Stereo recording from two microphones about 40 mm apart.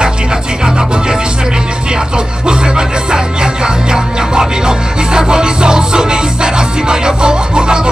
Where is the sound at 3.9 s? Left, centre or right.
Centre.